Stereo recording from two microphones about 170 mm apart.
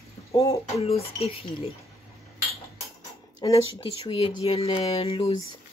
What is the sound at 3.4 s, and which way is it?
Speech, 25° left (ahead or behind).